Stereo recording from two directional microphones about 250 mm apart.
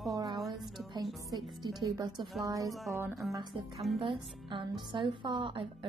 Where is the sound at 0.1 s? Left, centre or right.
Centre.